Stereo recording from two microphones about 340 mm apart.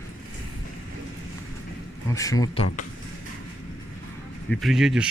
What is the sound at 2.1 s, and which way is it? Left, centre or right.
Speech, centre.